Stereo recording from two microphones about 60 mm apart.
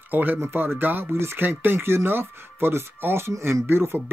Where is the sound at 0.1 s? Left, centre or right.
Right.